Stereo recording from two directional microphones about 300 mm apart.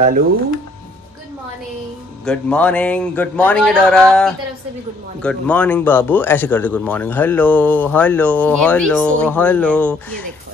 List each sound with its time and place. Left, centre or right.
0.0 s speech: right
2.2 s speech: centre